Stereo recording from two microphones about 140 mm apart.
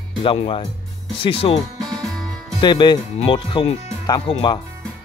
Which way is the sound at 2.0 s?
5° left (ahead or behind).